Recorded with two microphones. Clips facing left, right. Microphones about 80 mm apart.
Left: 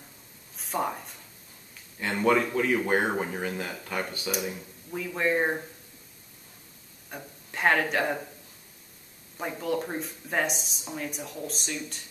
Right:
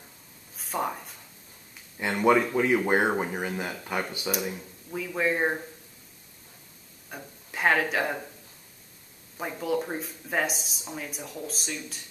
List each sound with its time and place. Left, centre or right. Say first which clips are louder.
0.6 s speech: even; centre
2.0 s speech: right 2 dB; centre
7.1 s speech: even; centre
9.4 s speech: right 1 dB; centre